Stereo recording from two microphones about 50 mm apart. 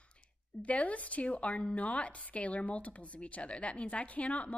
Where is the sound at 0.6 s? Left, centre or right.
Left.